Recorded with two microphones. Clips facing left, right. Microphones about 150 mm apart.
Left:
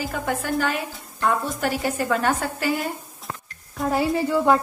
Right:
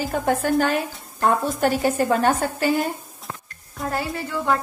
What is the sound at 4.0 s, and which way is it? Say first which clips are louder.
Speech: left 6 dB; 20° left (ahead or behind).